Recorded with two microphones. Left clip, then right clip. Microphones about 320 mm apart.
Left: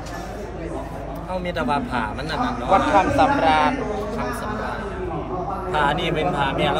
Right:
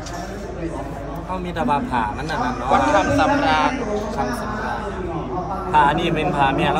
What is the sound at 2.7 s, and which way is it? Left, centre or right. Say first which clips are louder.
A man's voice: even; left.